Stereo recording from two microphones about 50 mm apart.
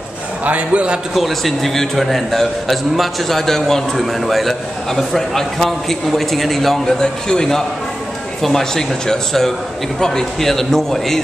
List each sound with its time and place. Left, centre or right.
0.5 s a man's voice: right
1.1 s a man's voice: centre